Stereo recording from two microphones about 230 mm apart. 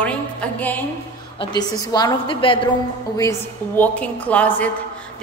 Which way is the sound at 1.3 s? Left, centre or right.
Centre.